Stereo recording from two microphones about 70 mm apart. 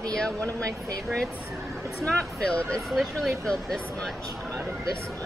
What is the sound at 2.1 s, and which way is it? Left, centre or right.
Speech, centre.